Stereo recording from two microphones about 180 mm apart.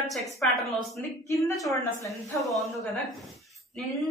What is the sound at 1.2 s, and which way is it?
Speech, 15° left (ahead or behind).